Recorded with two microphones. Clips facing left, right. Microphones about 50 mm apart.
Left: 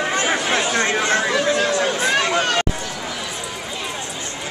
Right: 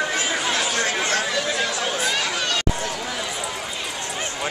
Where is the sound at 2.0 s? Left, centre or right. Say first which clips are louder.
Left 5 dB; left.